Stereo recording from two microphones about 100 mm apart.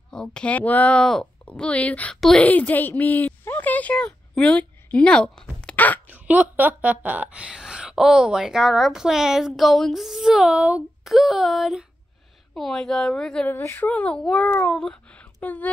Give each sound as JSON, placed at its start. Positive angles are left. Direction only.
{"t": 0.1, "sound": "speech", "side_deg": 10}
{"t": 6.0, "sound": "speech", "side_deg": -15}
{"t": 13.5, "sound": "speech", "side_deg": 25}